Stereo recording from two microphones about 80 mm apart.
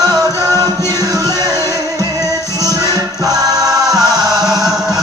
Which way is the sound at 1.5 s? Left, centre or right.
Left.